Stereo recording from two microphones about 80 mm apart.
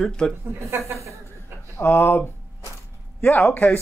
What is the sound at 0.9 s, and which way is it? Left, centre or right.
Chuckle, right.